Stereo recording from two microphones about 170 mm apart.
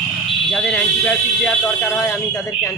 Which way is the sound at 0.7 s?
5° left (ahead or behind).